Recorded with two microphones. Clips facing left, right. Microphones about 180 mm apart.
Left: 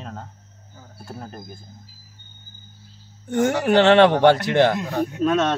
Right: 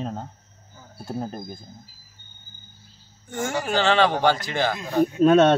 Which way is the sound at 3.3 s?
65° left (ahead or behind).